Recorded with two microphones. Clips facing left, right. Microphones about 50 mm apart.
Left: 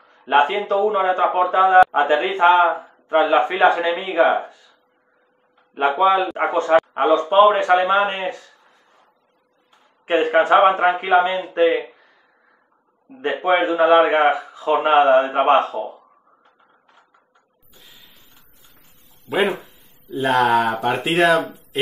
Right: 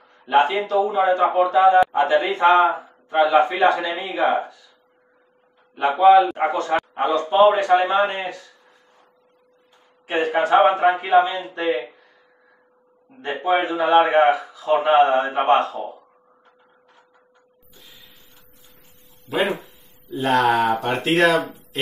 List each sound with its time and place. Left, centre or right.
0.3 s speech: left
5.8 s a man's voice: left
10.0 s speech: left
13.2 s speech: left
19.2 s speech: centre